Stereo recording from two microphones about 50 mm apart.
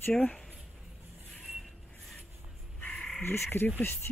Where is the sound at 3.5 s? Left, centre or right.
Left.